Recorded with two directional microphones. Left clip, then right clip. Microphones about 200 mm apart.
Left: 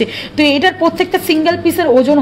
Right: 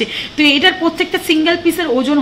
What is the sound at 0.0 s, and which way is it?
A woman's voice, 55° left (ahead or behind).